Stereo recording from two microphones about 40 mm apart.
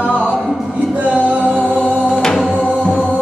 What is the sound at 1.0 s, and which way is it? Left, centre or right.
Music, right.